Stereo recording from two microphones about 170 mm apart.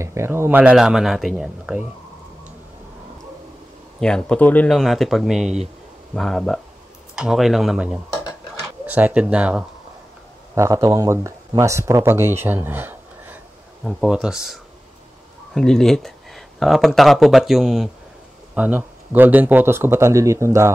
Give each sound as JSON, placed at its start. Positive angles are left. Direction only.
{"t": 0.0, "sound": "speech", "side_deg": -15}
{"t": 4.0, "sound": "speech", "side_deg": 5}
{"t": 8.3, "sound": "dishes", "side_deg": -5}
{"t": 10.5, "sound": "speech", "side_deg": -15}